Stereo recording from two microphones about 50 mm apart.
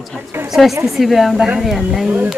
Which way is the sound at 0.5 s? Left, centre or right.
Centre.